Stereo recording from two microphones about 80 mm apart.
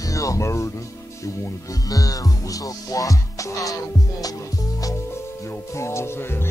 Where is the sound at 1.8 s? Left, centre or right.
Left.